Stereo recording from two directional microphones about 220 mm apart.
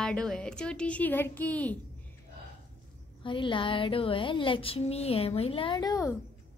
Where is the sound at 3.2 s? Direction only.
20° left (ahead or behind).